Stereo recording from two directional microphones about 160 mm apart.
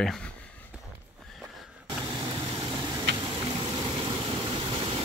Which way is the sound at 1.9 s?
30° right (ahead or behind).